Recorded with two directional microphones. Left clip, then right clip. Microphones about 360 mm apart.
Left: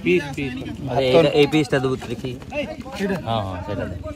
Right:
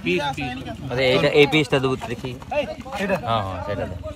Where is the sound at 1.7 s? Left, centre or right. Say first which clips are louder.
Even; right.